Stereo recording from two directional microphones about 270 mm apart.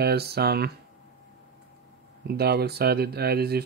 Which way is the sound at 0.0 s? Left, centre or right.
Right.